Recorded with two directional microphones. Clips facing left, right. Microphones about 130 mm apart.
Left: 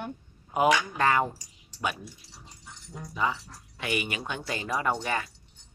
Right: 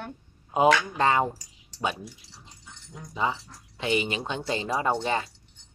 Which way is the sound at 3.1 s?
25° right (ahead or behind).